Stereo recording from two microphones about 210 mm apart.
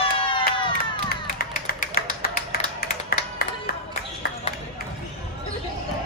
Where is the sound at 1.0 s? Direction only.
45° left (ahead or behind).